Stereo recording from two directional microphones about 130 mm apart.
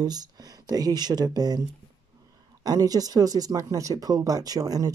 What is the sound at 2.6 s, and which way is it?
Speech, 30° right (ahead or behind).